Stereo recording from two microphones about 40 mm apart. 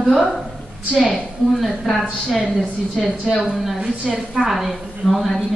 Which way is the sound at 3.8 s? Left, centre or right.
Centre.